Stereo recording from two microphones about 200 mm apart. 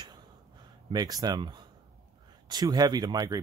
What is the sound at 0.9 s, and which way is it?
Speech, 20° right (ahead or behind).